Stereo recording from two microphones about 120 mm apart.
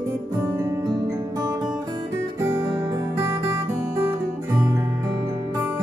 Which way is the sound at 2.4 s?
25° right (ahead or behind).